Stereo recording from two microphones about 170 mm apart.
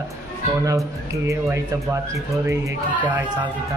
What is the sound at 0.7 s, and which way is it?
Speech, 20° right (ahead or behind).